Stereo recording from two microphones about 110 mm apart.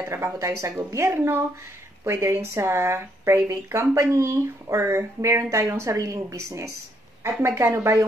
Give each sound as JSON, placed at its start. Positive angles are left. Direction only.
{"t": 0.1, "sound": "speech", "side_deg": -25}